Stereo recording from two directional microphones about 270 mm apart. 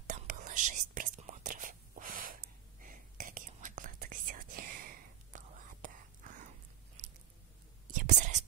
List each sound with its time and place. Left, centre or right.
0.0 s whispering: right
7.9 s whispering: right